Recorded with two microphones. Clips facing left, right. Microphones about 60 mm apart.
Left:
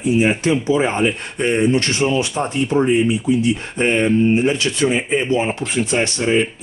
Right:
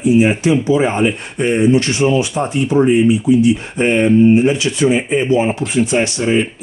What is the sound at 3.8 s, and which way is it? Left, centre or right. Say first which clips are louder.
Speech: right 4 dB; centre.